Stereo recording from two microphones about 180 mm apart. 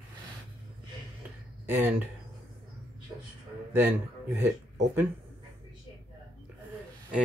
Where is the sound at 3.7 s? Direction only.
10° right (ahead or behind).